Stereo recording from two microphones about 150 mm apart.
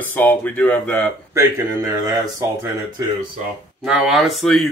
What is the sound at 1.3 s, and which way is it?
Speech, 20° right (ahead or behind).